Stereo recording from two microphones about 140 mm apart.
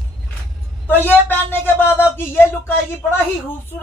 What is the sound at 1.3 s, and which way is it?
A woman's voice, 15° left (ahead or behind).